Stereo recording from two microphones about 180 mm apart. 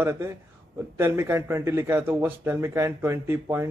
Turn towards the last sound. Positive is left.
turn(degrees=-15)  # may be behind; listen again after turning